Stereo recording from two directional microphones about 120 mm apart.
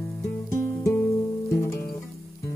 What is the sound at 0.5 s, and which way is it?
Music, 25° left (ahead or behind).